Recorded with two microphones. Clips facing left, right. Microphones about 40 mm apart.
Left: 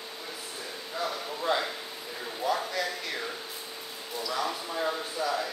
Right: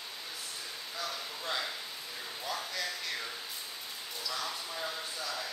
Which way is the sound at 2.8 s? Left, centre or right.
Centre.